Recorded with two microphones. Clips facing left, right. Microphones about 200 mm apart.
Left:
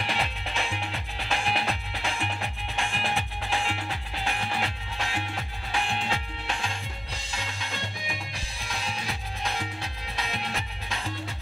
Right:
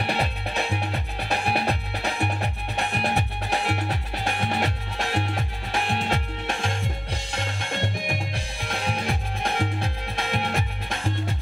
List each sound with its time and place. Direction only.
0.0 s music: 35° right (ahead or behind)